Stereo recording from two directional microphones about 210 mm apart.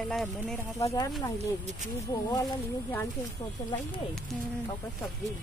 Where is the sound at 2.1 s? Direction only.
15° left (ahead or behind).